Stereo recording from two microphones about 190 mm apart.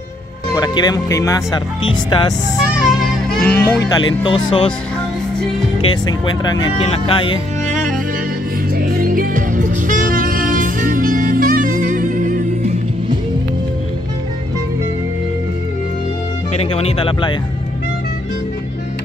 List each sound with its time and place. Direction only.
0.6 s speech: 20° left (ahead or behind)
2.9 s music: centre (ahead or behind)
3.8 s speech: 20° left (ahead or behind)
5.8 s speech: 20° left (ahead or behind)
8.7 s music: 50° right (ahead or behind)
16.5 s speech: 30° left (ahead or behind)